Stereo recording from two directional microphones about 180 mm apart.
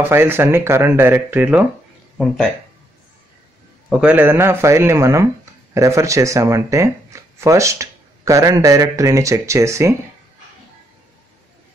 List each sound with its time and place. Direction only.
0.1 s speech: 15° right (ahead or behind)
3.9 s speech: 10° right (ahead or behind)